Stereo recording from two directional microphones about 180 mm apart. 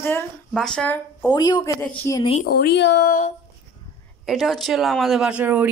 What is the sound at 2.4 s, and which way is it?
Speech, 60° left (ahead or behind).